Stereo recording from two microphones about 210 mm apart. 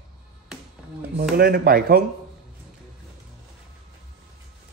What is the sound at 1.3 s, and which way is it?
Speech, 45° right (ahead or behind).